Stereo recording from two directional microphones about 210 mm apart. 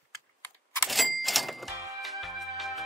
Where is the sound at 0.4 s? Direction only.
5° left (ahead or behind).